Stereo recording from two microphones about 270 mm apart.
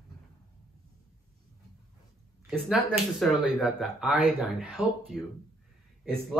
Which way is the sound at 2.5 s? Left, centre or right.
Centre.